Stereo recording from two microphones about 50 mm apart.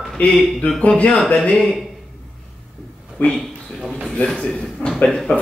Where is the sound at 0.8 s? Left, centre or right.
Left.